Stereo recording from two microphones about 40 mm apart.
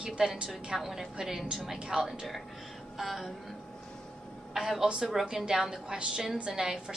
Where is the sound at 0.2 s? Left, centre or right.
Centre.